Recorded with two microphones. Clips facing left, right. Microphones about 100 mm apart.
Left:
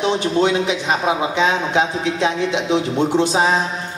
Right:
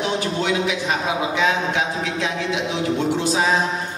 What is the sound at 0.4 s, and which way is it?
A man's voice, 25° left (ahead or behind).